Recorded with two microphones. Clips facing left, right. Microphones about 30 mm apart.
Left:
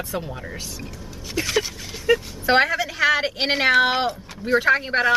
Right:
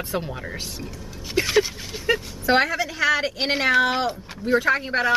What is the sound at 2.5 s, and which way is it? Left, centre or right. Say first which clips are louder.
A woman's voice: left 2 dB; centre.